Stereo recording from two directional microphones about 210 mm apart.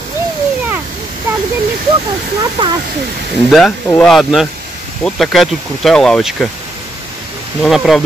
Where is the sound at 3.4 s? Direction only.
Centre (ahead or behind).